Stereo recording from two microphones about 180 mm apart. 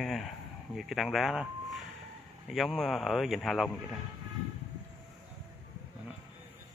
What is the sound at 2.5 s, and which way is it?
Speech, centre (ahead or behind).